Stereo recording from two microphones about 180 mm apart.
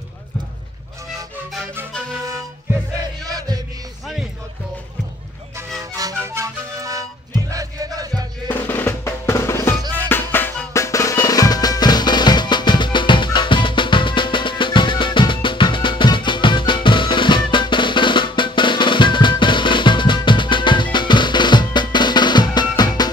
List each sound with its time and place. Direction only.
3.3 s music: 20° right (ahead or behind)
5.8 s music: 20° right (ahead or behind)
8.5 s drum: 10° left (ahead or behind)